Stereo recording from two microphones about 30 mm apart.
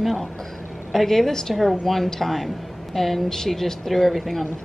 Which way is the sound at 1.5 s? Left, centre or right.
Centre.